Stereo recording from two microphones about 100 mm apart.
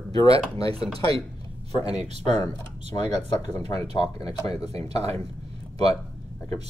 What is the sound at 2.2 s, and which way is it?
Speech, 55° left (ahead or behind).